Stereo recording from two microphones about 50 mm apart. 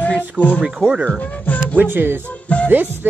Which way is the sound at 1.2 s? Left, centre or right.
Left.